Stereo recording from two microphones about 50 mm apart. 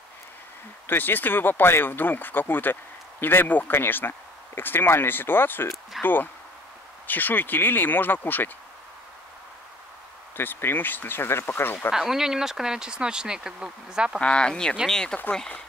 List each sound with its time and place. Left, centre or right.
0.8 s speech: left
5.9 s speech: centre
7.1 s speech: left
10.3 s speech: left
11.9 s speech: centre
14.2 s speech: centre